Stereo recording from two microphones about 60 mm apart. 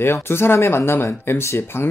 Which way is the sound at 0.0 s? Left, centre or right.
Left.